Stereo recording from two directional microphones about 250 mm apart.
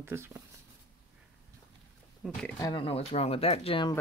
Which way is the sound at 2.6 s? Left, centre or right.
Centre.